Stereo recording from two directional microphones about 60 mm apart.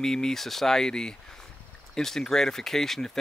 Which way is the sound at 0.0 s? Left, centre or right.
Centre.